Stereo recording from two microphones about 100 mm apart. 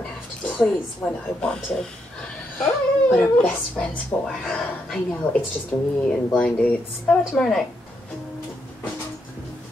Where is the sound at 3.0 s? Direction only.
10° left (ahead or behind).